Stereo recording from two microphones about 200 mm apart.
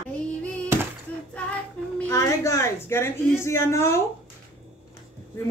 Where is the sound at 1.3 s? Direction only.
5° left (ahead or behind).